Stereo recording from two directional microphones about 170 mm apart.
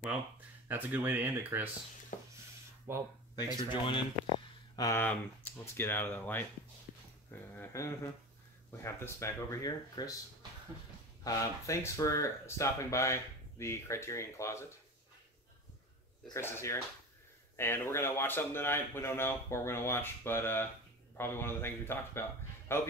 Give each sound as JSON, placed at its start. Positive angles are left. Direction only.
{"t": 0.7, "sound": "speech", "side_deg": -10}
{"t": 2.9, "sound": "speech", "side_deg": -15}
{"t": 3.3, "sound": "speech", "side_deg": 25}
{"t": 4.7, "sound": "speech", "side_deg": 15}
{"t": 11.2, "sound": "speech", "side_deg": 20}
{"t": 16.3, "sound": "speech", "side_deg": 15}